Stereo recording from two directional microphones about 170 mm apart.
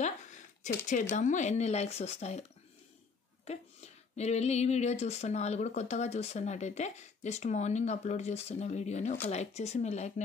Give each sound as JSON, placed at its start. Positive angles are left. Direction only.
{"t": 0.8, "sound": "speech", "side_deg": 45}
{"t": 3.4, "sound": "speech", "side_deg": 40}